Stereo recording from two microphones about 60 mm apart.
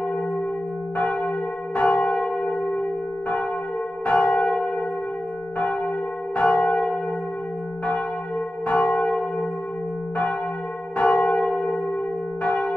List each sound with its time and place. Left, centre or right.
0.9 s church bell: left
4.0 s church bell: left
6.3 s church bell: left
8.6 s church bell: centre
11.0 s church bell: centre